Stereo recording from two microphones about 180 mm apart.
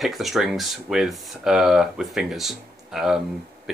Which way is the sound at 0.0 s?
Centre (ahead or behind).